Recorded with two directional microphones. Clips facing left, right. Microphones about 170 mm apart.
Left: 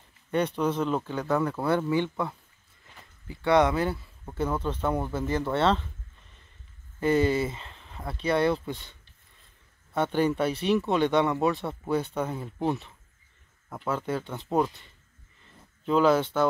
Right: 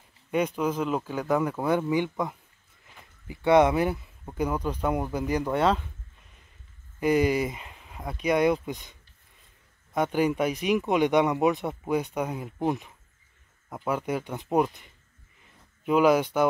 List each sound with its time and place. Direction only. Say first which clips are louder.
0.6 s speech: even; 10° right (ahead or behind)
7.0 s speech: right 1 dB; 15° right (ahead or behind)
9.9 s speech: even; 10° right (ahead or behind)